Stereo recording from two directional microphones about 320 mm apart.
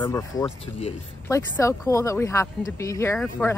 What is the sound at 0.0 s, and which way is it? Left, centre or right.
Speech, centre.